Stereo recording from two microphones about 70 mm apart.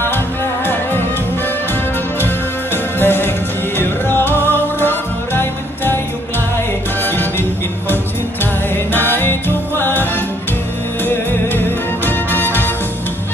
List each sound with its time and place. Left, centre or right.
2.1 s music: left
7.1 s music: left
8.7 s music: left
12.1 s music: left